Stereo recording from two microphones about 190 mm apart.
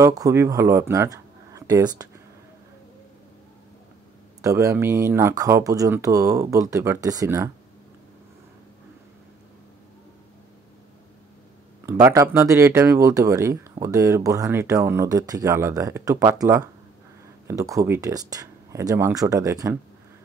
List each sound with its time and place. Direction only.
0.0 s speech: 15° right (ahead or behind)
4.4 s speech: 15° right (ahead or behind)
11.8 s speech: 15° right (ahead or behind)